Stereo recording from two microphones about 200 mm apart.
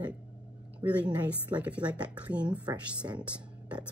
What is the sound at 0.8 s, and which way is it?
Speech, 5° right (ahead or behind).